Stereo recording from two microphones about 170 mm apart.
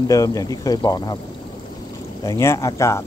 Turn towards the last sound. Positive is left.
turn(degrees=15)  # may be behind; listen again after turning